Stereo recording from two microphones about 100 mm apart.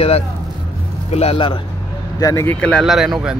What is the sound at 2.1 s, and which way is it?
Speech, 35° left (ahead or behind).